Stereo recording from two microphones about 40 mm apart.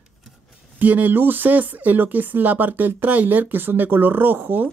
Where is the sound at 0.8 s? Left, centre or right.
Right.